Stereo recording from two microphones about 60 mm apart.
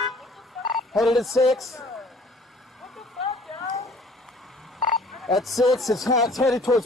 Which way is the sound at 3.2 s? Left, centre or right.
Centre.